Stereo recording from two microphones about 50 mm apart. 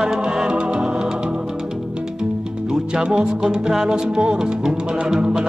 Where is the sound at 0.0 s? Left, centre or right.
Centre.